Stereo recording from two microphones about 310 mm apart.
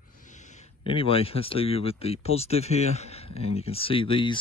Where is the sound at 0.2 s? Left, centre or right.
Left.